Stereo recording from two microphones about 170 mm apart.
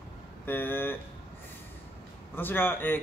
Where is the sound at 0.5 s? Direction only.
10° left (ahead or behind).